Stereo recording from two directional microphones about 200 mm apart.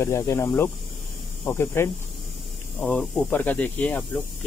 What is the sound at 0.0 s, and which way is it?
Speech, 15° left (ahead or behind).